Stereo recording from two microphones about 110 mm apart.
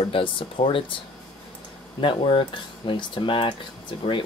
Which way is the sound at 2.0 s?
50° left (ahead or behind).